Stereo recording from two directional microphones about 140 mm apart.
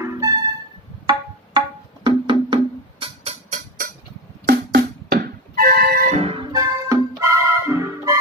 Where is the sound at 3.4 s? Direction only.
80° right.